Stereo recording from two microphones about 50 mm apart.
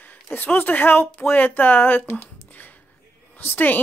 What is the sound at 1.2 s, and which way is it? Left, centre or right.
A woman's voice, left.